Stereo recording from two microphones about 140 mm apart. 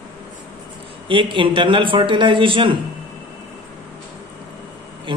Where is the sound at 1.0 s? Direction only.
35° right (ahead or behind).